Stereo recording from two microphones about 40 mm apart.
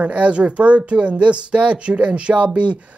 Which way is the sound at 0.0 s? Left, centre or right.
Right.